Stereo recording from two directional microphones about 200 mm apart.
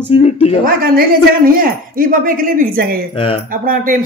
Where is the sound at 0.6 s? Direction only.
45° right (ahead or behind).